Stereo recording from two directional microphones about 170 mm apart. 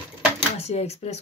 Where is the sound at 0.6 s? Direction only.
40° left (ahead or behind).